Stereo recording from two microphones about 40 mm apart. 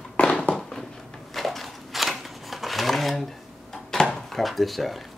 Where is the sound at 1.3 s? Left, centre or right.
Centre.